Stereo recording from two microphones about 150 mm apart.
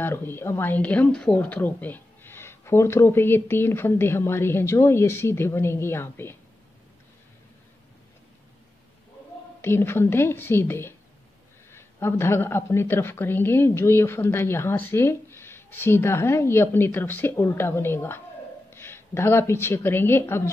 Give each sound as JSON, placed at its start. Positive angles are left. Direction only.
{"t": 0.0, "sound": "a woman's voice", "side_deg": 15}
{"t": 9.6, "sound": "a woman's voice", "side_deg": 15}